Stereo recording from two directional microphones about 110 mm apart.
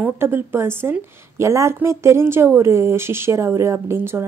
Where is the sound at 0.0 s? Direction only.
20° right (ahead or behind).